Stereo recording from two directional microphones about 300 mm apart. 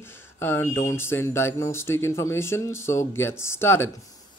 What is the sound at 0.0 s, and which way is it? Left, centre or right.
Speech, centre.